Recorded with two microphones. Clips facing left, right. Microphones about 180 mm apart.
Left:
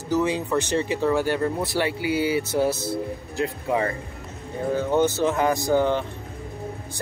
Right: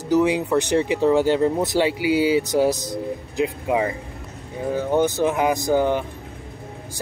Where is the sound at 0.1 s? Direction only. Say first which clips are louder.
Right 4 dB; 15° right (ahead or behind).